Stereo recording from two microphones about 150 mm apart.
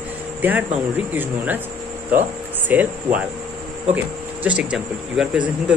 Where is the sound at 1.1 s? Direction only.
10° right (ahead or behind).